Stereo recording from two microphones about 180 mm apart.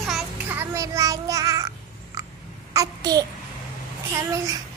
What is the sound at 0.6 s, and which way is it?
Child singing, 15° right (ahead or behind).